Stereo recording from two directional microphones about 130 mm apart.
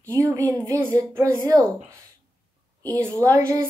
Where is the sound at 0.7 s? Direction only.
25° right (ahead or behind).